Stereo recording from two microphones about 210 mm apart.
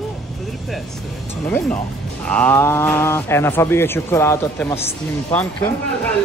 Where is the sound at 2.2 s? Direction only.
5° left (ahead or behind).